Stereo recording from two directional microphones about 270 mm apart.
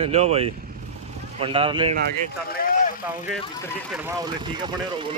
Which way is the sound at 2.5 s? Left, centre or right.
Left.